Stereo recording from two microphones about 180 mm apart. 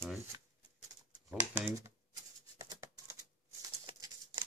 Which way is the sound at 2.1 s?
20° right (ahead or behind).